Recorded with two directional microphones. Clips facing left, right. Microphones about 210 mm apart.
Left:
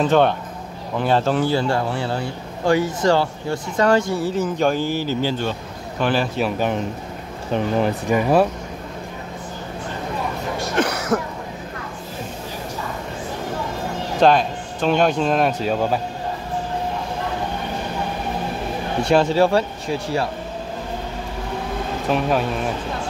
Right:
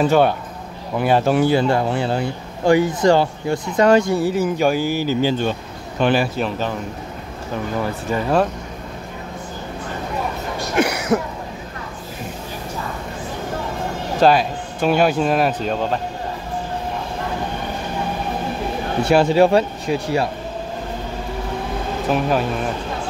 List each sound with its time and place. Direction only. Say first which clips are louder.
0.0 s speech: right 1 dB; 10° right (ahead or behind)
7.8 s speech: left 3 dB; 15° left (ahead or behind)
10.8 s cough: right 3 dB; 15° right (ahead or behind)
14.2 s speech: right 1 dB; 5° right (ahead or behind)
19.0 s speech: right 2 dB; 10° right (ahead or behind)
22.1 s speech: right 1 dB; centre (ahead or behind)